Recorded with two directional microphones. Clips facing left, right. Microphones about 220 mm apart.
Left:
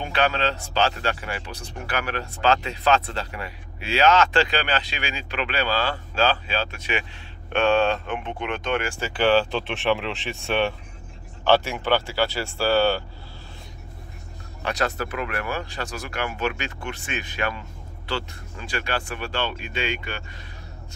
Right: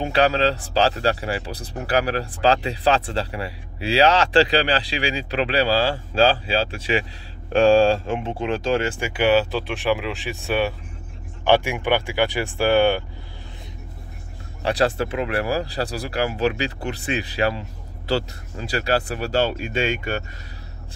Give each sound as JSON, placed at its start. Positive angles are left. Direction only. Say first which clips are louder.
{"t": 0.0, "sound": "speech", "louder": "right 5 dB", "side_deg": -35}
{"t": 9.0, "sound": "speech", "louder": "even", "side_deg": -10}
{"t": 11.4, "sound": "speech", "louder": "right 2 dB", "side_deg": -15}
{"t": 14.6, "sound": "speech", "louder": "right 6 dB", "side_deg": -30}